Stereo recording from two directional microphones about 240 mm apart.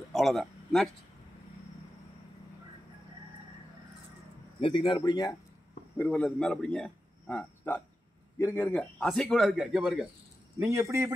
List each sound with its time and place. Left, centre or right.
0.1 s a sound: centre
4.6 s a man's voice: centre
5.9 s a man's voice: centre
10.6 s a man's voice: centre